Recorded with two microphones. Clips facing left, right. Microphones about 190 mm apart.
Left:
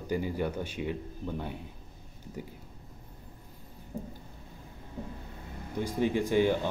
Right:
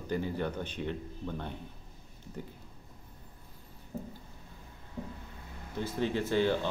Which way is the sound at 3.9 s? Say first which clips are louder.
Left 1 dB; 15° left (ahead or behind).